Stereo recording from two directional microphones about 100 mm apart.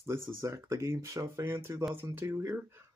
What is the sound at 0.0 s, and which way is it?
Speech, 25° right (ahead or behind).